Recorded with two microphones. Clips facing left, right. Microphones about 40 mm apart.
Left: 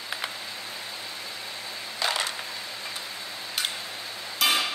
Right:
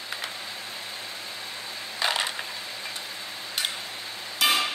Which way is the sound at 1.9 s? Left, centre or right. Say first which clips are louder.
Right 1 dB; centre.